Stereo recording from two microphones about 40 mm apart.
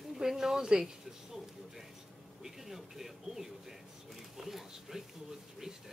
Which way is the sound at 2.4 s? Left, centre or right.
Centre.